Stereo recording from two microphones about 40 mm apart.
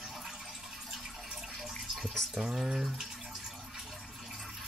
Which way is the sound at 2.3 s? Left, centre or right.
Centre.